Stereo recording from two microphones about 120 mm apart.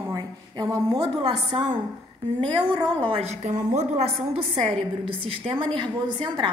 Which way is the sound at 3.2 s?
70° right (ahead or behind).